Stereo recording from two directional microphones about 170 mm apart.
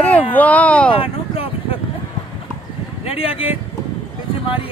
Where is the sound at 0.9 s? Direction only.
35° left (ahead or behind).